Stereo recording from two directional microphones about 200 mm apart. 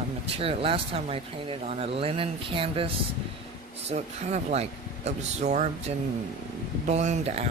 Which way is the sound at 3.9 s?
35° right (ahead or behind).